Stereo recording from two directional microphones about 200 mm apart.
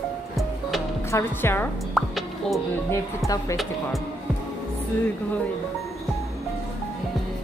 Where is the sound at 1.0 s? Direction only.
10° left (ahead or behind).